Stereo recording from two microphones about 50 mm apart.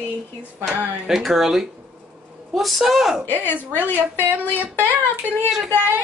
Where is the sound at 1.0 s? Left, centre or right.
Centre.